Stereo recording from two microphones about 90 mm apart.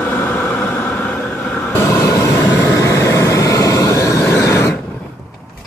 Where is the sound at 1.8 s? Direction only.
35° left (ahead or behind).